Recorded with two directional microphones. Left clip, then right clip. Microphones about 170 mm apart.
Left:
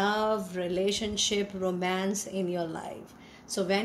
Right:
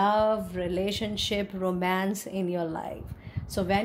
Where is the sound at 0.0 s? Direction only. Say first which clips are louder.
Right 4 dB; 50° right (ahead or behind).